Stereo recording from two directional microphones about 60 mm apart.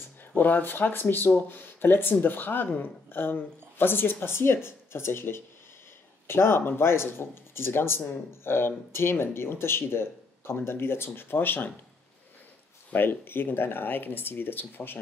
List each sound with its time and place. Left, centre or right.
0.4 s speech: left
12.9 s speech: left